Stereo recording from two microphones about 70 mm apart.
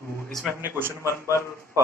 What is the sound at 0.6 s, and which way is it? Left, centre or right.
Speech, right.